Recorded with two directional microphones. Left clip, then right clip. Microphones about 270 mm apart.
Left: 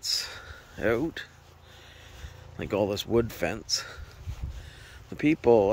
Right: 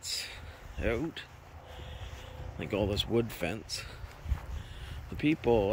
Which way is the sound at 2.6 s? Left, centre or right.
Centre.